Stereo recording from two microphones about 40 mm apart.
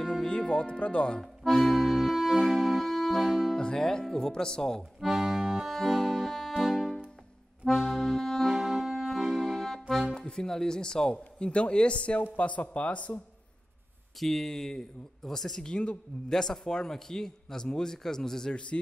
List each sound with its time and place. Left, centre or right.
0.0 s music: centre
0.3 s speech: left
1.2 s accordion: centre
3.5 s a man's voice: centre
5.0 s accordion: centre
6.5 s music: centre
7.8 s accordion: centre
8.5 s music: centre
8.9 s accordion: centre
10.1 s speech: centre; by 13.2 s left
14.2 s a man's voice: centre
15.7 s speech: left
16.3 s a man's voice: centre
18.5 s speech: left